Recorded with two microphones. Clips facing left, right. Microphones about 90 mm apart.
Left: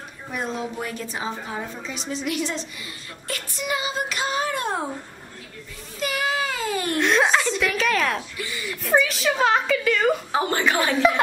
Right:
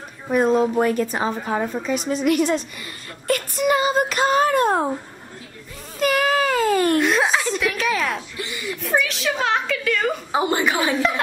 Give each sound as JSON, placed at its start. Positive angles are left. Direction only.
{"t": 0.3, "sound": "a woman's voice", "side_deg": -45}
{"t": 5.9, "sound": "a sound", "side_deg": -50}
{"t": 7.0, "sound": "a sound", "side_deg": -5}
{"t": 8.4, "sound": "speech", "side_deg": -20}
{"t": 8.8, "sound": "a woman's voice", "side_deg": 0}
{"t": 10.3, "sound": "a woman's voice", "side_deg": -15}
{"t": 10.8, "sound": "a woman's voice", "side_deg": 0}